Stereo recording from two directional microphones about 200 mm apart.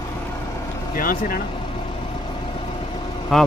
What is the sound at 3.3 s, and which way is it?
Speech, centre (ahead or behind).